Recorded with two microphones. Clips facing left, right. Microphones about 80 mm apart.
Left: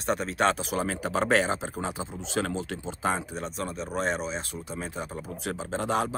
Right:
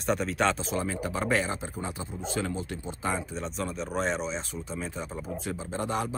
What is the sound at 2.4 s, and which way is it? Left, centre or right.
Speech, left.